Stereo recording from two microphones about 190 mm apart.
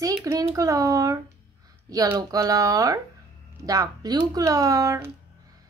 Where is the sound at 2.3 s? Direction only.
20° right (ahead or behind).